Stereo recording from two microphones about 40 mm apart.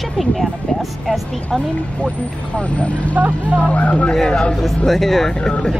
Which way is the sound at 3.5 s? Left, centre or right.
Left.